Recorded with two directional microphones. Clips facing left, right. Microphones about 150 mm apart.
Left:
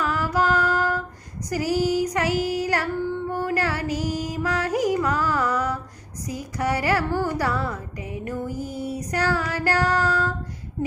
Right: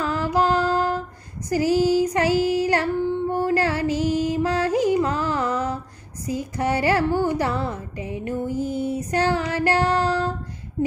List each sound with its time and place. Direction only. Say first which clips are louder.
0.0 s music: right 2 dB; 25° right (ahead or behind)
1.5 s female singing: right 4 dB; 25° right (ahead or behind)
6.2 s a child's voice: right 2 dB; 25° right (ahead or behind)